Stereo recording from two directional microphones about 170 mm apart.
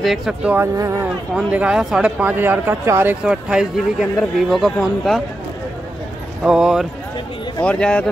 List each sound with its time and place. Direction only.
0.0 s speech: centre (ahead or behind)
0.7 s speech: 20° right (ahead or behind)
1.0 s speech: 10° right (ahead or behind)
6.4 s a man's voice: 5° right (ahead or behind)